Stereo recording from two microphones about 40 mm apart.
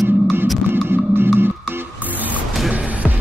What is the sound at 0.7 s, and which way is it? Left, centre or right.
Music, right.